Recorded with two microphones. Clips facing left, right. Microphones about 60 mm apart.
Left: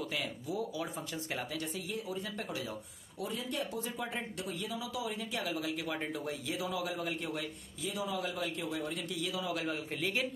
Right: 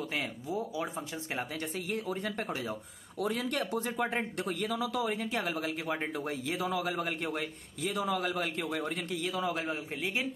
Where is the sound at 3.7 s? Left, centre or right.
Right.